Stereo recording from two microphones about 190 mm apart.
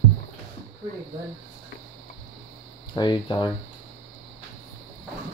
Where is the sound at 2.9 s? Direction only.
25° left (ahead or behind).